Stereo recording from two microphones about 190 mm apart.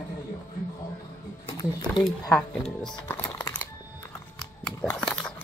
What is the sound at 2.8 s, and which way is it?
Music, 10° left (ahead or behind).